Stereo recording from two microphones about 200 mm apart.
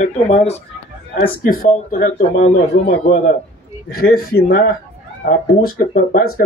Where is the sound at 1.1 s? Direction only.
45° left (ahead or behind).